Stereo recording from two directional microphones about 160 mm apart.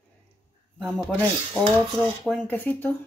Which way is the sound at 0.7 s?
5° left (ahead or behind).